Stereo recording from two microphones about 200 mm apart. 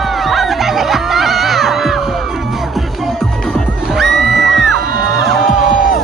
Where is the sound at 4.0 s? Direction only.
Centre (ahead or behind).